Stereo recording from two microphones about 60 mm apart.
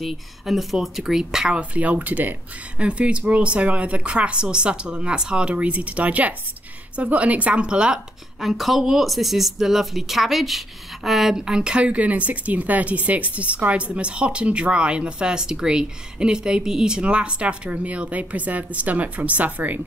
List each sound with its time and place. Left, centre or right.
0.0 s speech: centre
1.6 s speech: right
8.4 s speech: centre; by 19.8 s right